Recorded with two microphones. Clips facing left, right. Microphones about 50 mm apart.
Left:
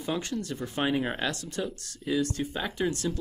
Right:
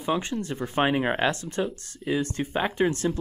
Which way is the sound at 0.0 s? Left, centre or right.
Right.